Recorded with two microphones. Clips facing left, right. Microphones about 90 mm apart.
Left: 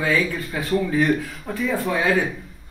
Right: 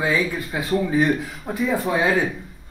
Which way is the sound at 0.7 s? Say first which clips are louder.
Right 1 dB; 20° right (ahead or behind).